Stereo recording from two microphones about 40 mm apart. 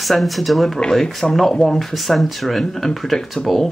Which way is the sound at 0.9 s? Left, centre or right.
Centre.